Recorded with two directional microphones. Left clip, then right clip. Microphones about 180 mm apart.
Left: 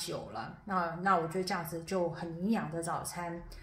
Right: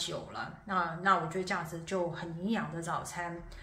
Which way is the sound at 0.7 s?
65° left (ahead or behind).